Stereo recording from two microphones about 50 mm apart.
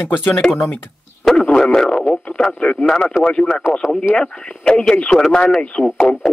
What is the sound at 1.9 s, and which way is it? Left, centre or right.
Speech, left.